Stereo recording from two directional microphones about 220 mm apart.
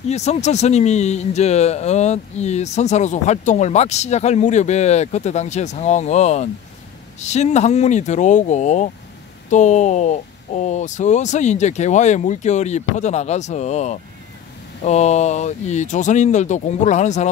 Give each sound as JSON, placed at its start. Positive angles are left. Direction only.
{"t": 0.1, "sound": "speech", "side_deg": 30}